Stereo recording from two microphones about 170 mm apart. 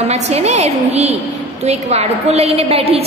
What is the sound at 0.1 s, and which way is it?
A woman's voice, 40° right (ahead or behind).